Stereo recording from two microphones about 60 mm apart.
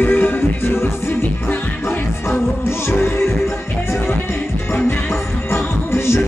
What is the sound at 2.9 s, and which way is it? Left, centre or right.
Music, left.